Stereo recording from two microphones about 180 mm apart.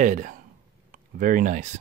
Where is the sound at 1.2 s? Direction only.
50° right (ahead or behind).